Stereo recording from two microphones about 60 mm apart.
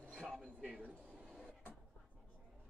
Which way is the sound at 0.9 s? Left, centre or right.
Centre.